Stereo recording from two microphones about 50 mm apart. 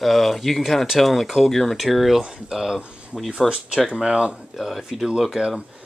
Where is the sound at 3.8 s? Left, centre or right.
Centre.